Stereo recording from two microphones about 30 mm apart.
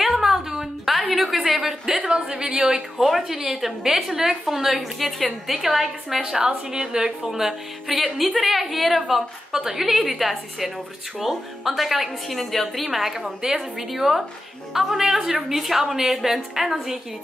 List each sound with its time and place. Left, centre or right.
0.0 s a sound: centre
1.1 s a woman's voice: centre
2.0 s a woman's voice: right
3.0 s a woman's voice: centre
6.4 s a woman's voice: right
7.2 s a woman's voice: centre